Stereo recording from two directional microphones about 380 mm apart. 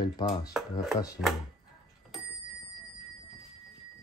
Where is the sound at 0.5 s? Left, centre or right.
Centre.